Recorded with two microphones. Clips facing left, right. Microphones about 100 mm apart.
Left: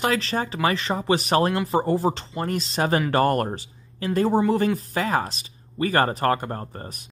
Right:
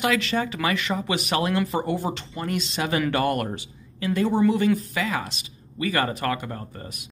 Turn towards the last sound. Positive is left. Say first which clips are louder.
# left 2 dB
turn(degrees=40)  # may be behind; listen again after turning